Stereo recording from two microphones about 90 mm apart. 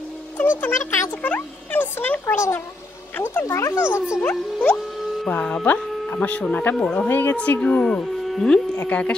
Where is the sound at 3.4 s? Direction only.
35° left (ahead or behind).